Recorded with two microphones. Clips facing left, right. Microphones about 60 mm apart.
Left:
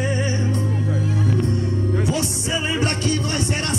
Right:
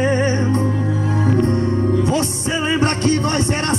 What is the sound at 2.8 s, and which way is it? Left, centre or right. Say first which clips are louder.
Music: right 5 dB; right.